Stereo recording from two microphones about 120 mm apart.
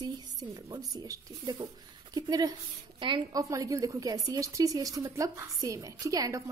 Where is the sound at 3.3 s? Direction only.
30° right (ahead or behind).